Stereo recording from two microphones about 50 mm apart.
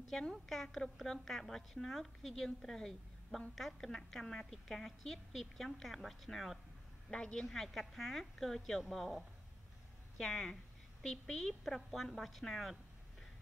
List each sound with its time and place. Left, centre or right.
0.3 s a woman's voice: centre
7.1 s a woman's voice: centre